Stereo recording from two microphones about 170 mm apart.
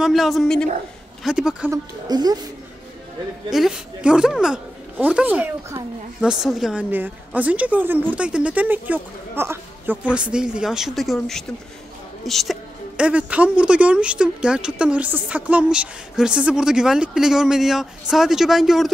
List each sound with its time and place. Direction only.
0.0 s a woman's voice: centre (ahead or behind)
1.7 s speech: 25° right (ahead or behind)
3.4 s a woman's voice: centre (ahead or behind)